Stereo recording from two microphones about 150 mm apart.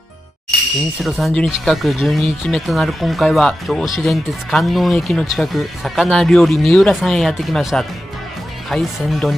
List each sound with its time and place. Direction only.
1.0 s speech: centre (ahead or behind)